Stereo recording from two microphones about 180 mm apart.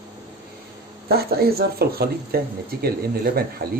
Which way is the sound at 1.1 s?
60° right (ahead or behind).